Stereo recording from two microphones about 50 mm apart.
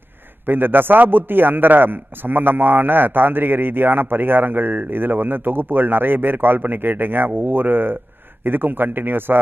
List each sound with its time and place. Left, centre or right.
0.5 s a man's voice: right